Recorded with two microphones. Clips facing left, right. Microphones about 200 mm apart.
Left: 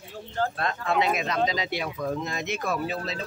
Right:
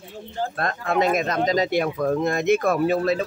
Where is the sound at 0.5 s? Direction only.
45° right (ahead or behind).